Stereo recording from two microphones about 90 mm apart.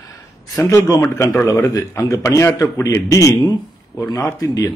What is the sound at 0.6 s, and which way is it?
A man's voice, 30° left (ahead or behind).